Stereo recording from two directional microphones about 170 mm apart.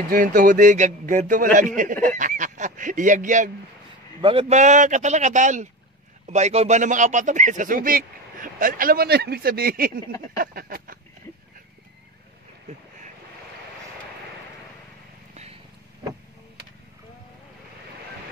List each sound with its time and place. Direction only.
0.1 s speech: 55° right (ahead or behind)
4.2 s speech: 35° right (ahead or behind); by 9.9 s 60° right (ahead or behind)
10.3 s a sound: 60° right (ahead or behind)